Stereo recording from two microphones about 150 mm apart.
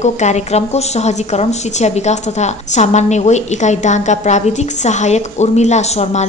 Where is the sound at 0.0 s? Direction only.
50° left (ahead or behind).